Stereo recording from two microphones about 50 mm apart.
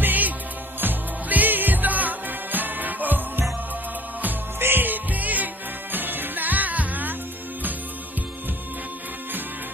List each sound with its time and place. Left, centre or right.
0.0 s music: right
4.6 s music: right